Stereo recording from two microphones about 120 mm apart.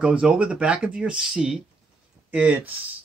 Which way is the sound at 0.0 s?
10° right (ahead or behind).